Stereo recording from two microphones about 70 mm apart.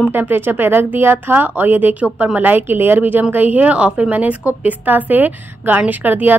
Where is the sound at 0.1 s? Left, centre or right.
Right.